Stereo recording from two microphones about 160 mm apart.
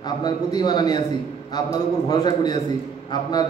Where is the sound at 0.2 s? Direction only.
25° left (ahead or behind).